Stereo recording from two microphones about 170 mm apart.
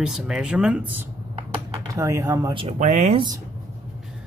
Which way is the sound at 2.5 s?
40° right (ahead or behind).